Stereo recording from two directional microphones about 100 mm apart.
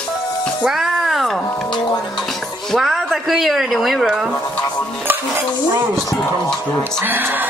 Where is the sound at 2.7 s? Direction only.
Centre (ahead or behind).